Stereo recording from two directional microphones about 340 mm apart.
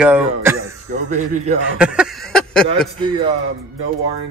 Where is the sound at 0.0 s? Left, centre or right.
Centre.